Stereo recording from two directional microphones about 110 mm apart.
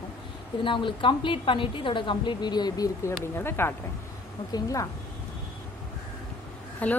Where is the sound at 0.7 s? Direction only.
50° left (ahead or behind).